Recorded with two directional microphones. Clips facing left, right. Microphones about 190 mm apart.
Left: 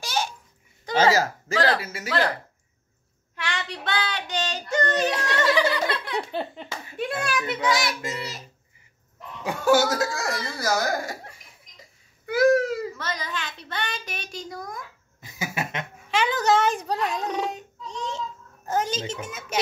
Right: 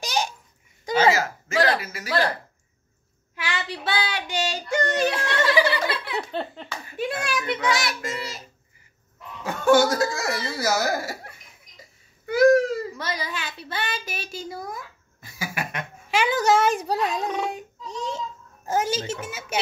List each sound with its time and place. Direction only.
0.0 s babbling: 15° right (ahead or behind)
0.9 s hiccup: 40° left (ahead or behind)
1.8 s speech: 25° left (ahead or behind)
3.3 s speech: 5° right (ahead or behind)
5.1 s speech: 40° left (ahead or behind)
5.4 s speech: 10° right (ahead or behind)
12.3 s a sound: 5° left (ahead or behind)
12.9 s a child's voice: 10° right (ahead or behind)
15.1 s cough: 20° left (ahead or behind)
16.1 s a child's voice: 10° right (ahead or behind)
17.4 s baby cry: 10° right (ahead or behind)
18.7 s a child's voice: 10° right (ahead or behind)